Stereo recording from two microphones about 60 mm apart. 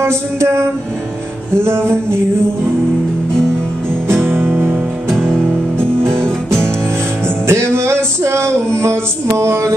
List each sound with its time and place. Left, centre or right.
0.0 s music: right
4.1 s music: right
5.8 s music: right
6.2 s music: centre
7.4 s music: right